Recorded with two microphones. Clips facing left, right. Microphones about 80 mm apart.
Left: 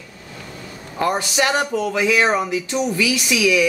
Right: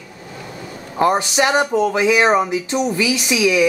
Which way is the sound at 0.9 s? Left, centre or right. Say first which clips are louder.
Right 4 dB; right.